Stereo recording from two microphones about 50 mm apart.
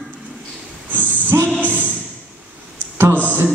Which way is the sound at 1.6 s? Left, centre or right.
Right.